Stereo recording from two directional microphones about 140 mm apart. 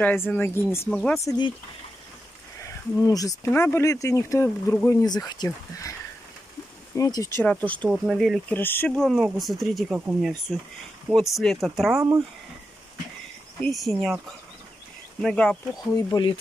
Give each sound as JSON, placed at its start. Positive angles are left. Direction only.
{"t": 0.0, "sound": "speech", "side_deg": 15}
{"t": 0.8, "sound": "speech", "side_deg": 5}
{"t": 3.0, "sound": "speech", "side_deg": 25}
{"t": 7.0, "sound": "speech", "side_deg": 25}
{"t": 7.9, "sound": "speech", "side_deg": 0}
{"t": 8.5, "sound": "speech", "side_deg": 15}
{"t": 8.9, "sound": "speech", "side_deg": 0}
{"t": 9.9, "sound": "speech", "side_deg": -10}
{"t": 11.1, "sound": "speech", "side_deg": 0}
{"t": 13.6, "sound": "speech", "side_deg": 0}
{"t": 15.2, "sound": "speech", "side_deg": 5}
{"t": 15.9, "sound": "speech", "side_deg": 25}